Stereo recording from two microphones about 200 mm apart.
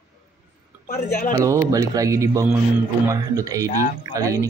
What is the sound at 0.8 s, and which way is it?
Speech, 50° left (ahead or behind).